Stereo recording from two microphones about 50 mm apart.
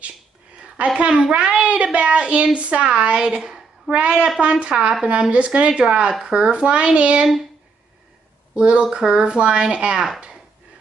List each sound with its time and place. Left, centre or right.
0.6 s a woman's voice: right
4.4 s speech: right
8.5 s speech: centre